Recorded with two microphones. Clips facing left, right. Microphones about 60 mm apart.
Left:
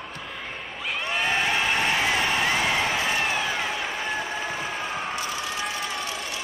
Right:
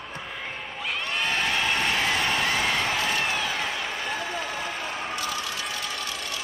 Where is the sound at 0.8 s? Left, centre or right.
Centre; by 5.7 s left.